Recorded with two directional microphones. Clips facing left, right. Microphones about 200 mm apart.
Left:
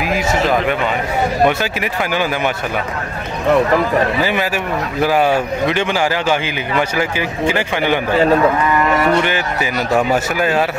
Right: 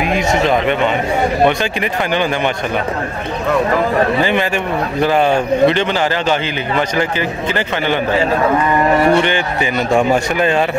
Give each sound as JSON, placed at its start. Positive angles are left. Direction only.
{"t": 0.0, "sound": "speech", "side_deg": 0}
{"t": 4.2, "sound": "a man's voice", "side_deg": 5}
{"t": 8.9, "sound": "music", "side_deg": -25}
{"t": 9.2, "sound": "speech", "side_deg": 5}